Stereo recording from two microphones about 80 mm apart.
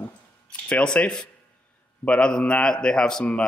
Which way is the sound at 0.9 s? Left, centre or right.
Centre.